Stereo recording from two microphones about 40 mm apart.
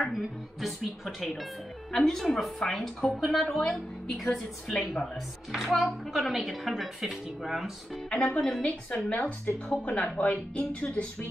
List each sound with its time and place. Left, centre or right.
0.2 s a woman's voice: centre
1.9 s a woman's voice: centre
5.5 s a woman's voice: centre
8.1 s a woman's voice: left
8.4 s a woman's voice: centre
8.6 s a woman's voice: left